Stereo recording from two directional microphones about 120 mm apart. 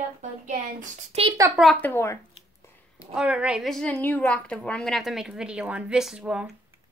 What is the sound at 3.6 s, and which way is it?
A woman's voice, 5° left (ahead or behind).